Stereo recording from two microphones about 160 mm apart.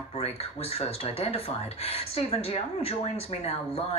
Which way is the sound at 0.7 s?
40° left (ahead or behind).